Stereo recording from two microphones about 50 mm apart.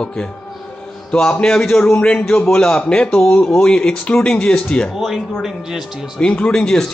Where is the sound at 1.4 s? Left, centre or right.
Centre.